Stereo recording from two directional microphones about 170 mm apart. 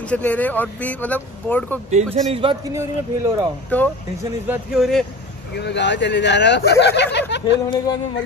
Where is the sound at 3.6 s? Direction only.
10° left (ahead or behind).